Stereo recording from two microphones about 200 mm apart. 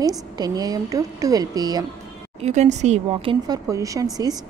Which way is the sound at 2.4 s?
35° right (ahead or behind).